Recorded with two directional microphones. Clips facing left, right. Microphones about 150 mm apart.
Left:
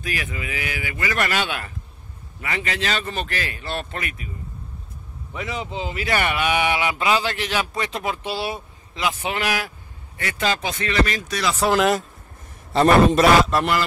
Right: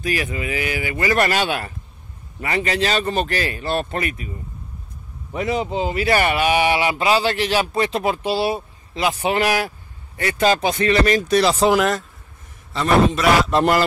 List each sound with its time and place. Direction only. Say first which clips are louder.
0.0 s speech: right 6 dB; 35° right (ahead or behind)
5.3 s speech: right 7 dB; 40° right (ahead or behind)
12.7 s a man's voice: left 2 dB; 45° left (ahead or behind)